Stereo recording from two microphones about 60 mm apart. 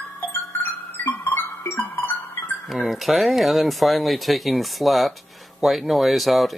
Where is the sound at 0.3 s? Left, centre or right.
Left.